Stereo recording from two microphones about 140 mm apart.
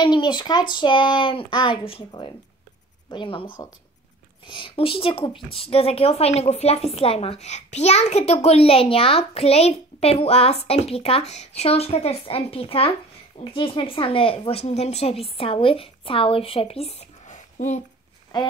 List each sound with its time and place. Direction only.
0.0 s speech: 30° left (ahead or behind)
4.5 s a child's voice: 40° left (ahead or behind); by 17.8 s 60° left (ahead or behind)
18.3 s speech: 30° left (ahead or behind)